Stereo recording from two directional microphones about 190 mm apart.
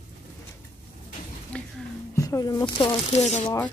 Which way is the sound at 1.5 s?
5° left (ahead or behind).